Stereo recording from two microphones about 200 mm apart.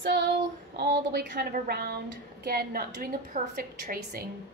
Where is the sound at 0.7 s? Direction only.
50° right (ahead or behind).